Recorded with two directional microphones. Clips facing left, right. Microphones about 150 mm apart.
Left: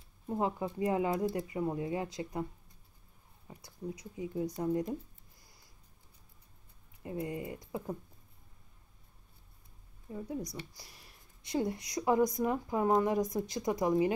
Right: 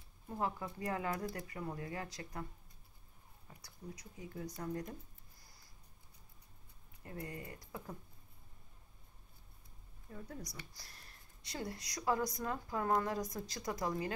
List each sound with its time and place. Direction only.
0.3 s speech: 20° left (ahead or behind)
3.4 s speech: 25° left (ahead or behind)
7.0 s speech: 20° left (ahead or behind)
10.1 s speech: 20° left (ahead or behind)
10.9 s a sound: 10° left (ahead or behind)
11.4 s speech: 20° left (ahead or behind)